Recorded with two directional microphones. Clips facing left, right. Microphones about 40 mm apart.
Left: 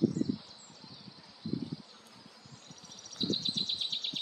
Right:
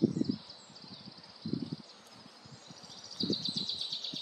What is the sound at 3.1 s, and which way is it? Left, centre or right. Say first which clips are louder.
Bird: left 1 dB; left.